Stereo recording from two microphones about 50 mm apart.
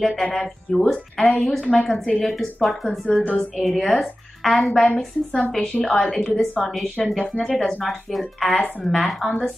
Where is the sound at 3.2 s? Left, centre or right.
Left.